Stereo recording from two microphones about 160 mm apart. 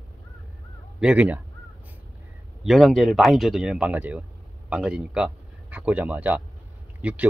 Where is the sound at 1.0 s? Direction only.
5° right (ahead or behind).